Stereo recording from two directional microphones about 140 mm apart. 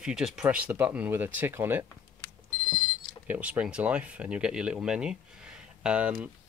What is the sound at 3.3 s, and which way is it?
Speech, 10° right (ahead or behind).